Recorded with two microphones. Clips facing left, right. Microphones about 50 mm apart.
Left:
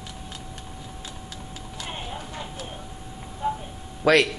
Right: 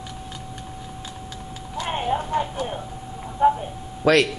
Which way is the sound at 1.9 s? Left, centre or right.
Right.